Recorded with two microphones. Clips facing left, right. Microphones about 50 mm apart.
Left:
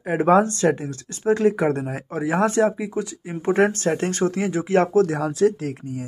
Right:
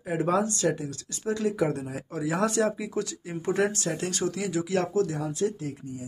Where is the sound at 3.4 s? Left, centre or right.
Left.